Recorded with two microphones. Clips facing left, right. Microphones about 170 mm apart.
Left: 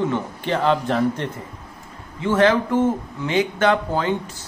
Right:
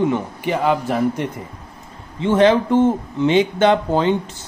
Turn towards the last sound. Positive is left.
turn(degrees=-20)  # may be behind; listen again after turning